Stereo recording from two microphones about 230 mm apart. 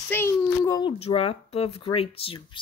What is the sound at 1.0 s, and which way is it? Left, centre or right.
Speech, left.